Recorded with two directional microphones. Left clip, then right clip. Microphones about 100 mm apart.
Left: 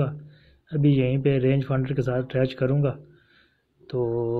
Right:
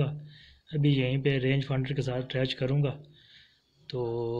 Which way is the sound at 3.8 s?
25° left (ahead or behind).